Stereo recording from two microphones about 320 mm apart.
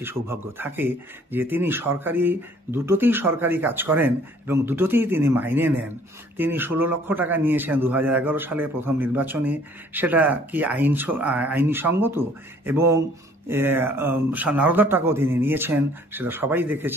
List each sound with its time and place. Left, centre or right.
0.0 s speech: centre